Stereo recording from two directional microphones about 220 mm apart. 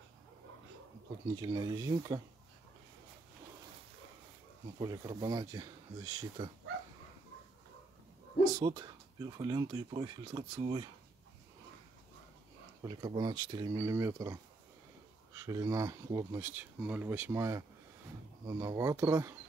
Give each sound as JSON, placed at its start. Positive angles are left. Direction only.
{"t": 1.3, "sound": "speech", "side_deg": -15}
{"t": 4.7, "sound": "speech", "side_deg": -15}
{"t": 8.5, "sound": "speech", "side_deg": -20}
{"t": 12.8, "sound": "speech", "side_deg": -20}